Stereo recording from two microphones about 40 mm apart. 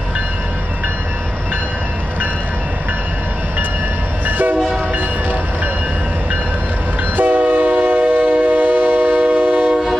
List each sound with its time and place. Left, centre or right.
4.3 s train: right
7.2 s train: right